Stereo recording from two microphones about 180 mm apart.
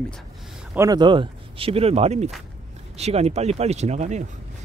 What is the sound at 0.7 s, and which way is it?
Speech, 20° right (ahead or behind).